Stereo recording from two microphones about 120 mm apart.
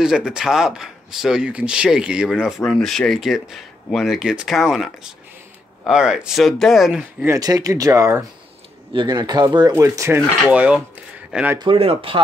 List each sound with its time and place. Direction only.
0.0 s speech: 5° right (ahead or behind)
7.3 s speech: 30° right (ahead or behind)
8.9 s speech: 35° right (ahead or behind)
10.4 s speech: 10° right (ahead or behind)
11.5 s speech: 45° right (ahead or behind)